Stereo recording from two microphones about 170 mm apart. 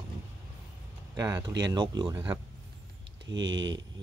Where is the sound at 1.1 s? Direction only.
20° right (ahead or behind).